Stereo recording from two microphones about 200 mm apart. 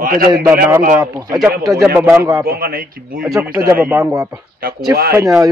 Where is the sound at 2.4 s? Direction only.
50° right (ahead or behind).